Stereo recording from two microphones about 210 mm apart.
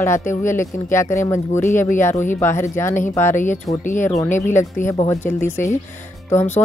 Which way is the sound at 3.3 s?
35° left (ahead or behind).